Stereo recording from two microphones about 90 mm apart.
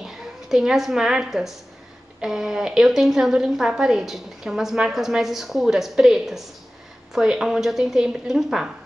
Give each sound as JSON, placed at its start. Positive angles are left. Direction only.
{"t": 0.0, "sound": "a woman's voice", "side_deg": -5}